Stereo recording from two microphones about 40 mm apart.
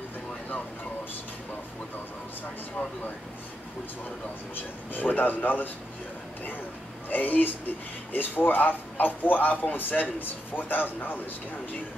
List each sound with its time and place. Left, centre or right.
4.6 s a man's voice: left
7.1 s a man's voice: left